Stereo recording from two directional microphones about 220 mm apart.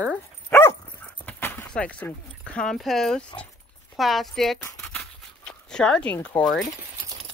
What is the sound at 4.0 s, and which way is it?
Speech, centre (ahead or behind).